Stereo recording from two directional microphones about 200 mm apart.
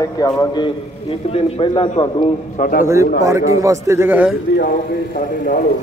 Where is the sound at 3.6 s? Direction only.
15° right (ahead or behind).